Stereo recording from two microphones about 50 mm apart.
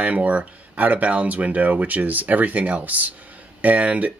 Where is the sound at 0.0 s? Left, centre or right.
Right.